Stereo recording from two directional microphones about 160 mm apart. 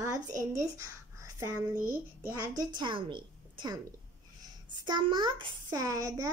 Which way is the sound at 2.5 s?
30° right (ahead or behind).